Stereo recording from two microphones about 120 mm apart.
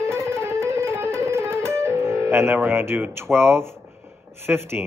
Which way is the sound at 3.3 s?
20° right (ahead or behind).